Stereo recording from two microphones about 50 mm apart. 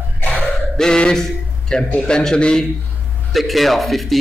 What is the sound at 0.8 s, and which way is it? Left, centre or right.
A man's voice, centre.